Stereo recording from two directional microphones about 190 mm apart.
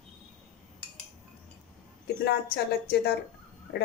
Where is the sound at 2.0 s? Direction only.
55° left (ahead or behind).